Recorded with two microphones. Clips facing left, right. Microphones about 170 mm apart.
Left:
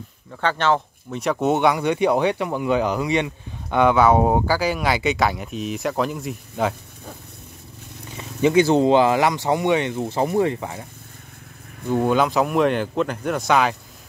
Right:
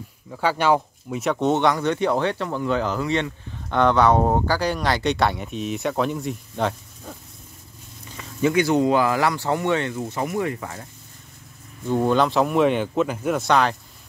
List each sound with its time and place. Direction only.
0.3 s speech: 10° right (ahead or behind)
8.4 s speech: 25° left (ahead or behind)
9.9 s speech: 30° left (ahead or behind)
11.9 s speech: 5° left (ahead or behind)